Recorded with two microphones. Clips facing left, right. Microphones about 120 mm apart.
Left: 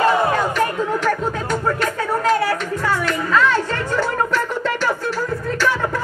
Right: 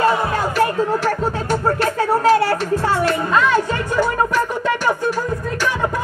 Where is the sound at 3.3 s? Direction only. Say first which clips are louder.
Left 1 dB; 10° right (ahead or behind).